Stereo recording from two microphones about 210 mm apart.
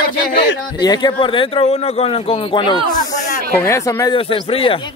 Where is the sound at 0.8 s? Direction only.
20° left (ahead or behind).